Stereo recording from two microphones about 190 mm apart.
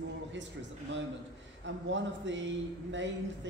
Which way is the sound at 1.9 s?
75° right (ahead or behind).